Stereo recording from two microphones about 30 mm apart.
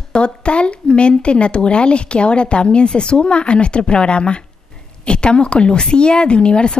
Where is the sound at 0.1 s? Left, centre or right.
Left.